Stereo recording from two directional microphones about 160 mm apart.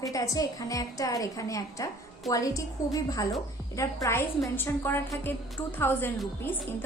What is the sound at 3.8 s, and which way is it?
A woman's voice, 15° left (ahead or behind).